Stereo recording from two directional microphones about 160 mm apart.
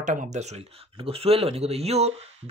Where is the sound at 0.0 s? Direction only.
50° right (ahead or behind).